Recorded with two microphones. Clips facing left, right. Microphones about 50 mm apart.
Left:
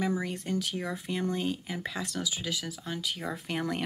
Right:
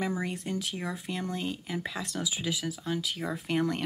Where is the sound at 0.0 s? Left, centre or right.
Centre.